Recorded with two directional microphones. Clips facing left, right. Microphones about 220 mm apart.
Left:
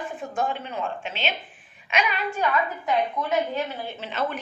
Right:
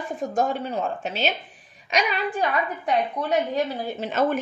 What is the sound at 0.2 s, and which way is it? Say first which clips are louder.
A woman's voice: right 5 dB; 40° right (ahead or behind).